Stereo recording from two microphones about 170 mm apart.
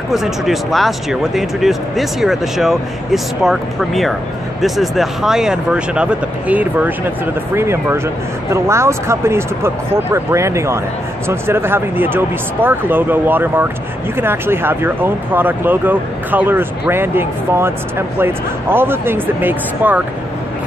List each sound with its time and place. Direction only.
0.1 s speech: centre (ahead or behind)